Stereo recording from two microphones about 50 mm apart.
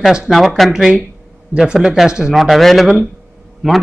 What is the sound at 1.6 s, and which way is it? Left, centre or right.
Speech, centre.